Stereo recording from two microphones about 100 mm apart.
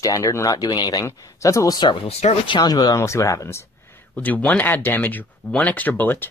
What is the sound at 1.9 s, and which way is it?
Speech, 80° left.